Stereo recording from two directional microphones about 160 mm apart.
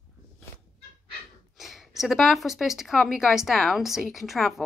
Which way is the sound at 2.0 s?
Centre (ahead or behind).